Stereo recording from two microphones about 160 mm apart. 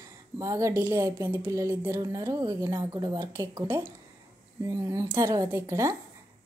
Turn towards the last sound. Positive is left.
turn(degrees=-20)  # may be behind; listen again after turning